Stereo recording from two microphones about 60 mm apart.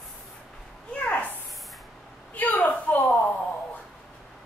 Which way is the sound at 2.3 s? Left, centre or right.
Left.